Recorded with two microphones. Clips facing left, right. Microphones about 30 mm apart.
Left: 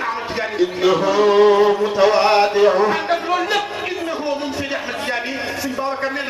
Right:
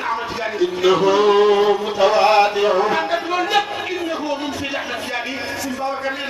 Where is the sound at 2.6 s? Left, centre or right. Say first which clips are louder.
Left 3 dB; centre.